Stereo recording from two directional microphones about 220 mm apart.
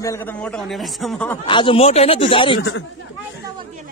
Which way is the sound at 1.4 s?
20° left (ahead or behind).